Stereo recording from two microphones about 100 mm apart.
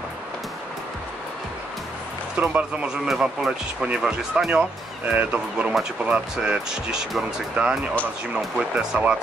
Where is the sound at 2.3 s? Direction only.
15° right (ahead or behind).